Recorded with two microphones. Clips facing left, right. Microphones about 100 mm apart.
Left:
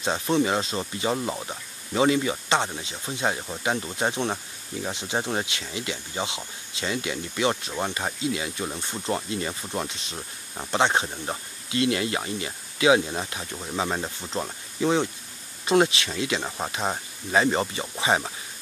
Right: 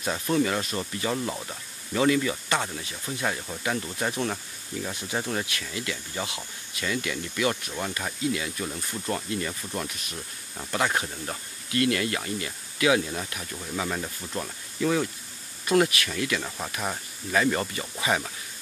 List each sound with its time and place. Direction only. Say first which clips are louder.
0.0 s speech: left 2 dB; 25° left (ahead or behind)